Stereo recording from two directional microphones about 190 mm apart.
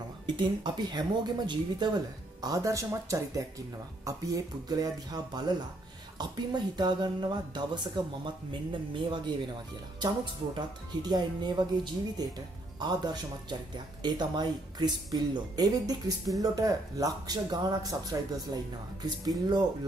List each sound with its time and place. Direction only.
0.4 s speech: 25° right (ahead or behind)
19.0 s speech: 20° right (ahead or behind)